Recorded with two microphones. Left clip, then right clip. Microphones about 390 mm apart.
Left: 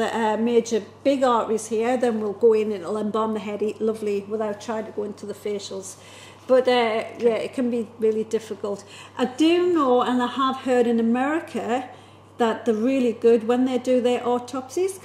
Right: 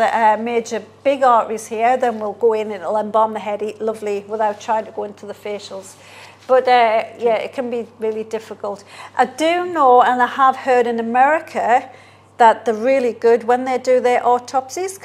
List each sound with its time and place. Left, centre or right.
0.0 s a woman's voice: right
5.3 s a woman's voice: right